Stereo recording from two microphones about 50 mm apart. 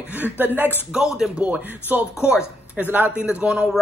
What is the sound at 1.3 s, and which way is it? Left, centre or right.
Speech, right.